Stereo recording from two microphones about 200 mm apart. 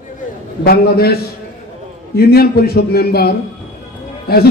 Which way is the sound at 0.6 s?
50° left (ahead or behind).